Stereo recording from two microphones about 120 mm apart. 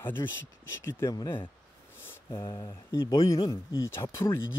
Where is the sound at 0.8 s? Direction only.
20° left (ahead or behind).